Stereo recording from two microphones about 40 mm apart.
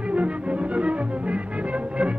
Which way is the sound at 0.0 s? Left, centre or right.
Right.